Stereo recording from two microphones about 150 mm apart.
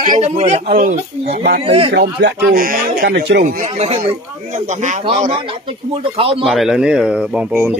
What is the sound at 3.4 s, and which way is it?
A man's voice, 50° right (ahead or behind).